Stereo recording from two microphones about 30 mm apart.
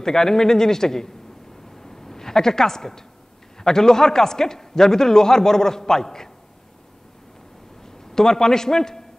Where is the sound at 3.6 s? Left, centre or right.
Centre.